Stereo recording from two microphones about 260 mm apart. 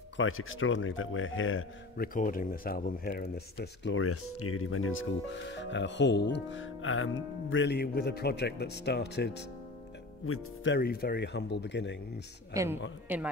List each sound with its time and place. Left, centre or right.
0.2 s speech: left
2.0 s speech: left
10.2 s speech: left
12.6 s a woman's voice: centre